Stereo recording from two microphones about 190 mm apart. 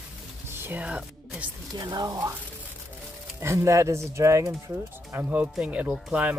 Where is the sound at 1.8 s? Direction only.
20° right (ahead or behind).